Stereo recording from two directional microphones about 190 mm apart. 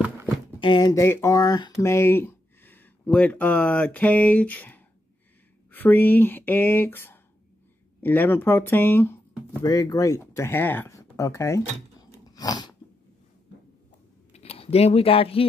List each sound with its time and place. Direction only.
0.6 s speech: 25° left (ahead or behind)
12.1 s a sound: 20° left (ahead or behind)
14.3 s speech: 30° left (ahead or behind)